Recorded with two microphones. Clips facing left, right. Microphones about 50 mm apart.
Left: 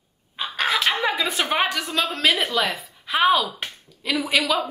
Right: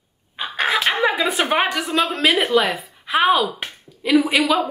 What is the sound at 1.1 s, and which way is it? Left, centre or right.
A woman's voice, right.